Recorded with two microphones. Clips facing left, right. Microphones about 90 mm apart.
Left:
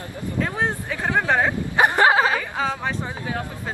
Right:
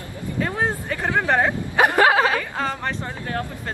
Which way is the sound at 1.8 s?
20° left (ahead or behind).